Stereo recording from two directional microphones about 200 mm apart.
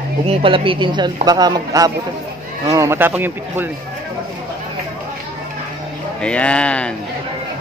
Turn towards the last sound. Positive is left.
turn(degrees=5)  # may be behind; listen again after turning